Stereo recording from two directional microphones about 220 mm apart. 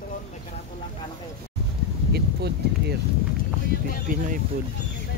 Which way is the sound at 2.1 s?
50° right (ahead or behind).